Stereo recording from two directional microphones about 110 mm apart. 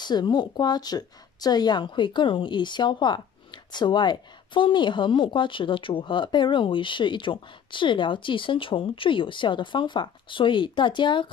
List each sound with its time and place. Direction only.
0.0 s speech: 40° left (ahead or behind)